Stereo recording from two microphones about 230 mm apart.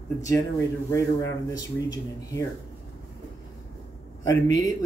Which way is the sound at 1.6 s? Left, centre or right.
Centre.